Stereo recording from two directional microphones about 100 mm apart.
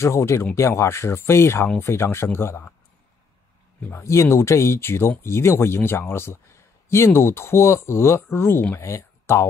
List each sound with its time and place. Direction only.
0.0 s speech: 30° left (ahead or behind)
3.9 s speech: 30° left (ahead or behind)